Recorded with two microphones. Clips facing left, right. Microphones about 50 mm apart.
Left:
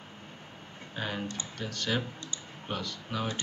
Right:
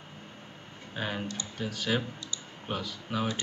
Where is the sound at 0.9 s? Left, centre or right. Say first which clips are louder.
Right 1 dB; centre.